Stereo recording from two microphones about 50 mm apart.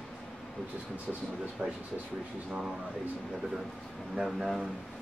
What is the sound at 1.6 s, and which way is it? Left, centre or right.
Speech, right.